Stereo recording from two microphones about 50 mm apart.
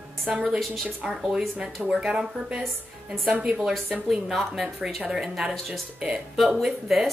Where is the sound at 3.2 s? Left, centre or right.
Right.